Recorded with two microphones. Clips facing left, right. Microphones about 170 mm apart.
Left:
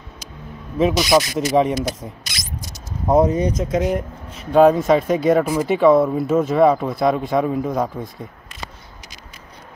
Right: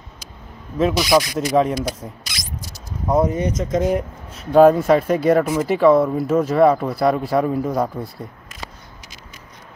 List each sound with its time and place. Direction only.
0.9 s speech: centre (ahead or behind)
2.7 s speech: 20° left (ahead or behind); by 8.1 s 10° right (ahead or behind)